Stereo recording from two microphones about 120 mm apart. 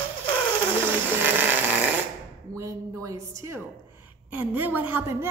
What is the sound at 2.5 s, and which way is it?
A woman's voice, 25° right (ahead or behind).